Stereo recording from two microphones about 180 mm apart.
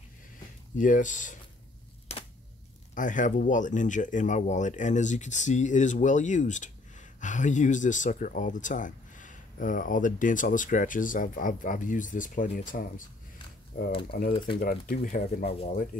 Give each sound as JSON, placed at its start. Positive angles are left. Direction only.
{"t": 0.7, "sound": "speech", "side_deg": 45}
{"t": 2.1, "sound": "a sound", "side_deg": 35}
{"t": 2.9, "sound": "speech", "side_deg": 45}
{"t": 13.7, "sound": "speech", "side_deg": 60}